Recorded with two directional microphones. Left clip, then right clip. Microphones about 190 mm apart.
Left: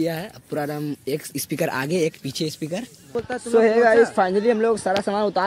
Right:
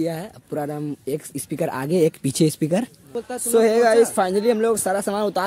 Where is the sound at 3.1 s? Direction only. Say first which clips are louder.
Left 2 dB; 15° left (ahead or behind).